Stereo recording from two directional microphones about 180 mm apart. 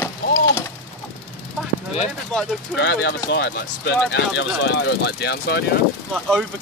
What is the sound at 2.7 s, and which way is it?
Speech, 80° left.